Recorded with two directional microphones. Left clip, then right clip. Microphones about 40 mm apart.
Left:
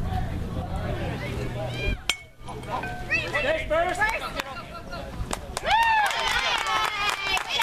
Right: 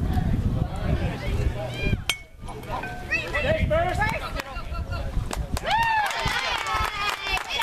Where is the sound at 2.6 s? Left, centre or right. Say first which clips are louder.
Left 1 dB; centre.